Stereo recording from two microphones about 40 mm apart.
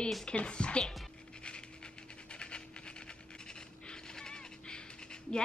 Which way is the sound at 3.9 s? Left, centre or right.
Centre.